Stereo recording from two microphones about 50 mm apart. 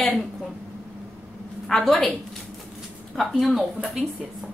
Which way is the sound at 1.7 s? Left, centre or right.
Centre.